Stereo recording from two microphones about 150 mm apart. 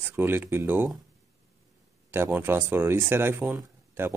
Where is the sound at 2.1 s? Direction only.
15° right (ahead or behind).